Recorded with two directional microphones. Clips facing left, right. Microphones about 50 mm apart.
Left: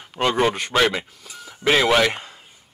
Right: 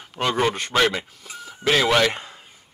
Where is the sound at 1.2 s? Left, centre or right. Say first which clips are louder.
Right 2 dB; centre.